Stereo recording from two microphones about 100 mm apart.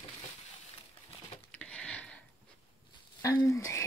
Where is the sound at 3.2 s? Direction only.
35° left (ahead or behind).